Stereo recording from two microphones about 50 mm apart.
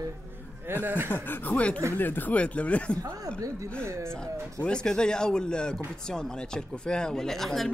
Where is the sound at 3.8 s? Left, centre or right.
Right.